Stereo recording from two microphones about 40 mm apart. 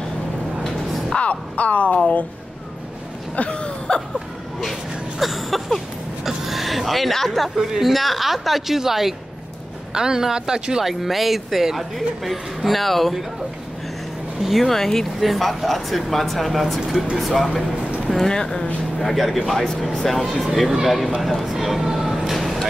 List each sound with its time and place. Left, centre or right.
1.1 s speech: left
3.3 s a sound: left
5.2 s a sound: centre
7.5 s speech: centre
10.8 s speech: centre
14.4 s speech: centre
14.7 s speech: centre
18.3 s speech: centre
18.9 s speech: centre